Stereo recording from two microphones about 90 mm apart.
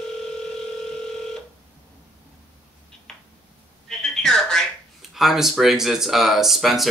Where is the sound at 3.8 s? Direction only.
5° left (ahead or behind).